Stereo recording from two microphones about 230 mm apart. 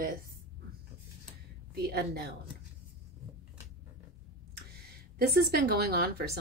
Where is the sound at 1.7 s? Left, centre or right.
Right.